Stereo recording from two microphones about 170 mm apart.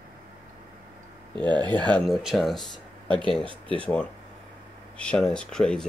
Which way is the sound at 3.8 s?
5° left (ahead or behind).